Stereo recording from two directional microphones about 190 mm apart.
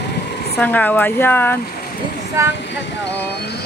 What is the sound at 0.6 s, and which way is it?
Speech, 10° left (ahead or behind).